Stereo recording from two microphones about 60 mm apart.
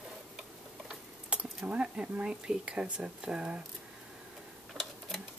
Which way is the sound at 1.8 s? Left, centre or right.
Centre.